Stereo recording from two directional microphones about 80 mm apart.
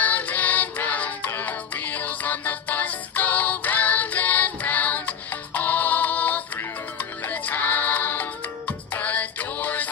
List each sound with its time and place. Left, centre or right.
0.0 s music: left